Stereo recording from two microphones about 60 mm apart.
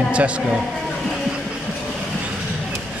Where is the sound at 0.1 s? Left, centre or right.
Centre.